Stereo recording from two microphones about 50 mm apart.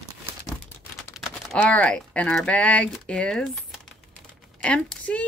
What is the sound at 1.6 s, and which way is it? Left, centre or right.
Speech, left.